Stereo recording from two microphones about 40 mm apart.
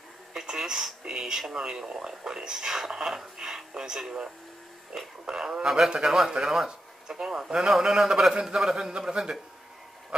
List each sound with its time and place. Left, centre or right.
0.3 s speech: centre